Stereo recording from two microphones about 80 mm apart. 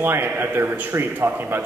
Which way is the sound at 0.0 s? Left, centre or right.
Right.